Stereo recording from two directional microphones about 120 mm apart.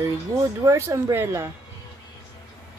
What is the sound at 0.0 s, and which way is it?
Speech, 25° right (ahead or behind).